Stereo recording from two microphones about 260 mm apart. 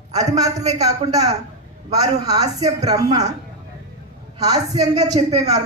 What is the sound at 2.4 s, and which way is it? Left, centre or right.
Speech, right.